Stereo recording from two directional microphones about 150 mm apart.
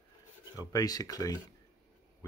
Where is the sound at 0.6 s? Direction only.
25° left (ahead or behind).